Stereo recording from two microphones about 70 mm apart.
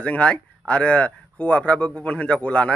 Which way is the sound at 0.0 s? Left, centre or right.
Centre.